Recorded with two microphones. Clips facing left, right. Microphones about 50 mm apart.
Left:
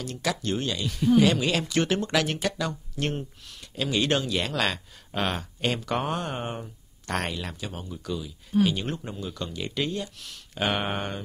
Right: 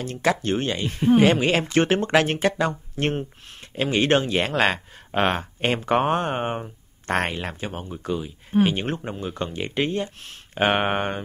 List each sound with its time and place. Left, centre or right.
0.0 s speech: right